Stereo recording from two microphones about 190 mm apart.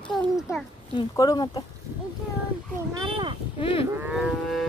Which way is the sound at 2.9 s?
25° right (ahead or behind).